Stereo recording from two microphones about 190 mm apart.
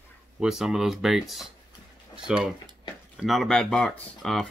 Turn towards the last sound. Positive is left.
turn(degrees=0)  # may be behind; listen again after turning